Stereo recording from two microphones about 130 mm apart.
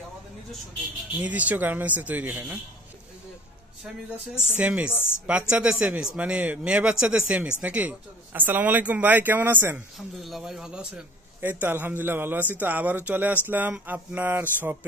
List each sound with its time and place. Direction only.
1.2 s speech: 10° right (ahead or behind)
4.6 s speech: 10° right (ahead or behind)
4.9 s a woman's voice: 15° left (ahead or behind)
5.5 s speech: 10° right (ahead or behind)
9.9 s a man's voice: centre (ahead or behind)